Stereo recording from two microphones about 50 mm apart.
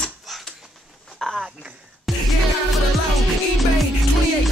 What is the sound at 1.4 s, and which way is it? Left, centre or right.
Speech, centre.